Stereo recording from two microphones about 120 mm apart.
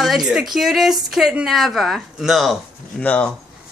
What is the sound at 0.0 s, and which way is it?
Speech, centre (ahead or behind).